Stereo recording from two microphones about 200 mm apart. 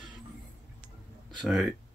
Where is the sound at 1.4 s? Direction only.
Centre (ahead or behind).